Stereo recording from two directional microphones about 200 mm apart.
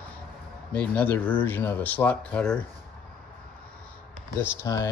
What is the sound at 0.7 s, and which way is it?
Speech, 10° left (ahead or behind).